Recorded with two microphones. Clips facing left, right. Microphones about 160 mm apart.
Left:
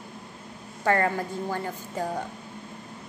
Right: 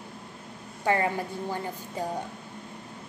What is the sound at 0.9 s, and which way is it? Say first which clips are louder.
Speech: left 2 dB; 15° right (ahead or behind).